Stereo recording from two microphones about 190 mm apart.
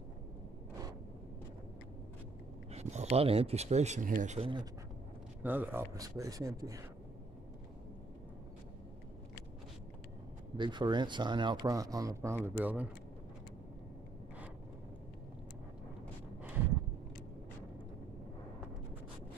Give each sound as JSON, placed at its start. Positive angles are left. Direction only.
{"t": 2.7, "sound": "speech", "side_deg": -35}
{"t": 5.4, "sound": "a man's voice", "side_deg": -10}
{"t": 10.6, "sound": "speech", "side_deg": -25}